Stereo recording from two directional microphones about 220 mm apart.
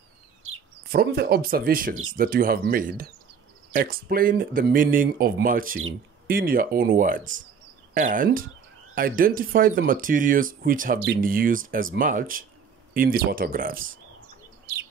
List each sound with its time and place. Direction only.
0.9 s speech: 45° right (ahead or behind)